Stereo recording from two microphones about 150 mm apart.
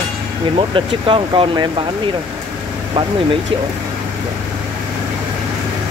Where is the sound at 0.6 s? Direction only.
35° right (ahead or behind).